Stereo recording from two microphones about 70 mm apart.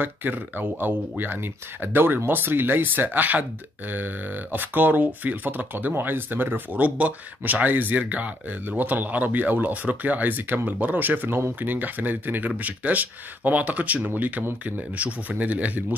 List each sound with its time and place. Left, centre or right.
0.0 s speech: right